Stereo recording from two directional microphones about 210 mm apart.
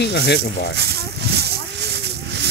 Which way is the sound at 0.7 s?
50° right (ahead or behind).